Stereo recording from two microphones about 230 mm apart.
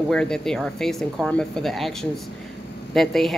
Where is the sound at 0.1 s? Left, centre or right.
Centre.